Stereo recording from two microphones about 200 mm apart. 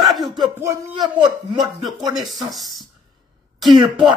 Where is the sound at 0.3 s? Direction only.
20° right (ahead or behind).